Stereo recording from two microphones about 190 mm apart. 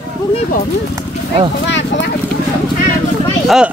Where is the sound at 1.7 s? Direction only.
70° left (ahead or behind).